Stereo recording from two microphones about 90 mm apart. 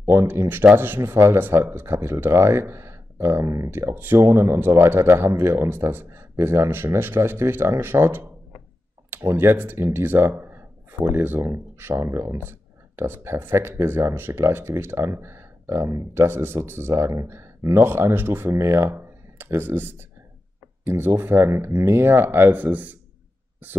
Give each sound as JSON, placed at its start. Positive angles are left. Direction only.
{"t": 0.0, "sound": "speech", "side_deg": -30}